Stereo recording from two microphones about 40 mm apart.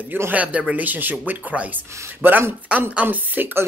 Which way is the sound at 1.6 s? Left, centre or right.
Right.